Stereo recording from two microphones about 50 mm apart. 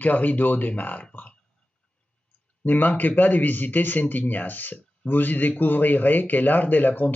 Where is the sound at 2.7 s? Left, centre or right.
Left.